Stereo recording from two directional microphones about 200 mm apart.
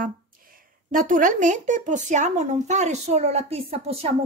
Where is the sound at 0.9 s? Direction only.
40° right (ahead or behind).